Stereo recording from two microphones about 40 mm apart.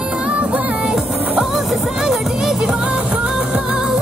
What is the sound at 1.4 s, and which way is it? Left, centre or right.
Music, centre.